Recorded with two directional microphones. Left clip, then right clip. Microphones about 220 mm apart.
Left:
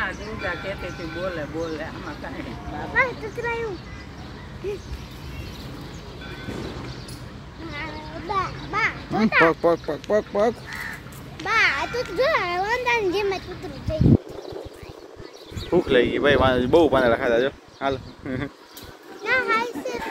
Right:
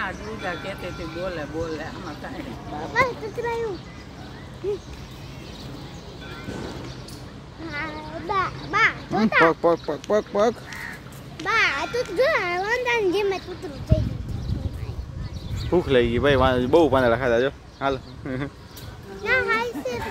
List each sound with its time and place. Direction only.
0.0 s a sound: 45° right (ahead or behind)
1.3 s speech: 45° right (ahead or behind)
2.9 s a child's voice: 10° right (ahead or behind)
7.7 s a child's voice: 10° right (ahead or behind)
9.6 s a child's voice: centre (ahead or behind)
11.4 s a child's voice: 25° right (ahead or behind)
15.7 s speech: centre (ahead or behind)
19.2 s children playing: 25° right (ahead or behind)